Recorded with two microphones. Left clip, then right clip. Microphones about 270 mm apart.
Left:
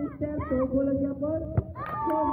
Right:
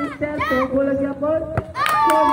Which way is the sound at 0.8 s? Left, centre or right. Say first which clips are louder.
Right 8 dB; centre.